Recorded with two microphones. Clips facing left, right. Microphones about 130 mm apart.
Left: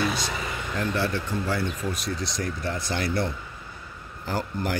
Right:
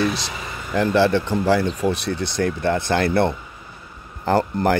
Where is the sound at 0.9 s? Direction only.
90° right.